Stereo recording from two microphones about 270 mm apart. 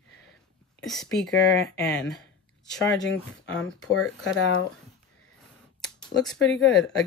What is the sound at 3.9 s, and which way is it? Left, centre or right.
Speech, left.